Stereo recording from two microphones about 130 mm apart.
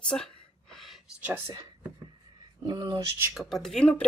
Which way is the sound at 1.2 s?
15° right (ahead or behind).